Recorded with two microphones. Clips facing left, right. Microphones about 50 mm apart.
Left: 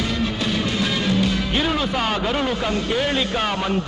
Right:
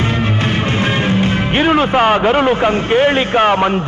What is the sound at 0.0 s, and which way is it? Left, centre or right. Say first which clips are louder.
Speech: right 6 dB; right.